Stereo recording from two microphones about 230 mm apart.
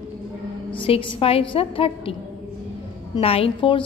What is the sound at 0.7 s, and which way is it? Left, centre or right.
A woman's voice, left.